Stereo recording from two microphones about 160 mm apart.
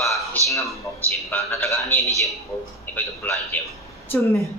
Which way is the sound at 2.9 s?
10° left (ahead or behind).